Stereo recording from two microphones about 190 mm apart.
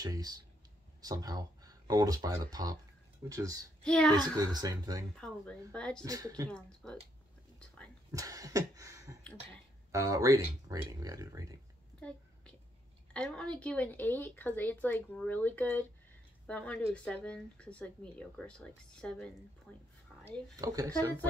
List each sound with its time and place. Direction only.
0.0 s speech: 20° right (ahead or behind)
3.8 s speech: 5° left (ahead or behind)
4.4 s speech: 20° right (ahead or behind)
5.1 s speech: 5° left (ahead or behind)
6.0 s speech: 20° right (ahead or behind)
6.5 s speech: 5° left (ahead or behind)
8.1 s a sound: 15° right (ahead or behind)
9.9 s speech: 15° right (ahead or behind)
13.1 s speech: 5° left (ahead or behind)
20.5 s speech: 20° right (ahead or behind)